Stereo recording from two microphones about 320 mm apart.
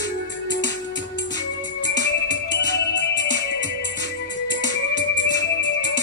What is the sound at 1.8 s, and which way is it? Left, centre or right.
Music, left.